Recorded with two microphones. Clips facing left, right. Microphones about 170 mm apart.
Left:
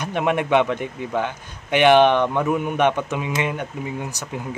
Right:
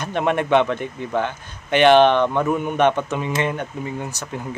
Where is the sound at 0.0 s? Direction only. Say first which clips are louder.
Right 1 dB; 10° left (ahead or behind).